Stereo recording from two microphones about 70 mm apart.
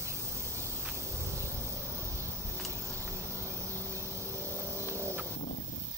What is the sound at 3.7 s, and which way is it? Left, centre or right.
Vehicle, right.